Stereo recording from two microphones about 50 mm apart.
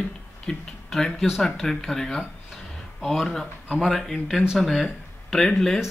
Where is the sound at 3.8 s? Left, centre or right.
Centre.